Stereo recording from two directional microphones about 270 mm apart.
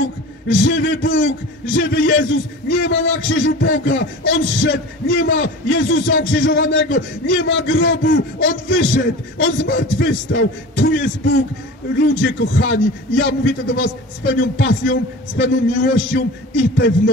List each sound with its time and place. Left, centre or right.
0.5 s a man's voice: left
12.2 s a man's voice: left